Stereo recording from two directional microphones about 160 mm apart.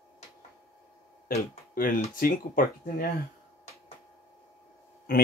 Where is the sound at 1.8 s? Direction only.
60° left (ahead or behind).